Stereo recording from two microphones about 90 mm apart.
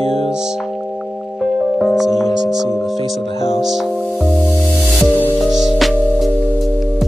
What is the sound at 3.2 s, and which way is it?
Music, 90° left.